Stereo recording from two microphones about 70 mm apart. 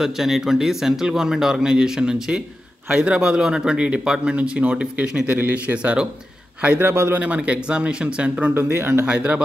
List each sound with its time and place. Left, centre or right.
0.0 s a man's voice: centre
6.9 s speech: right
7.2 s a man's voice: centre
8.5 s speech: right
9.0 s a man's voice: centre